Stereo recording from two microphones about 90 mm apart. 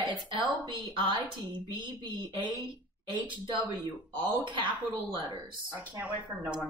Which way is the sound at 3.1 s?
65° right (ahead or behind).